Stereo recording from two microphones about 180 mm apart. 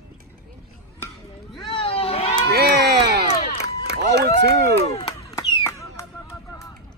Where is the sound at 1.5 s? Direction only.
25° left (ahead or behind).